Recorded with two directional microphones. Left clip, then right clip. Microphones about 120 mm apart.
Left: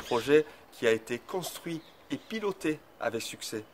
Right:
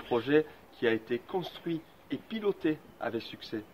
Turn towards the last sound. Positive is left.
turn(degrees=45)  # may be behind; listen again after turning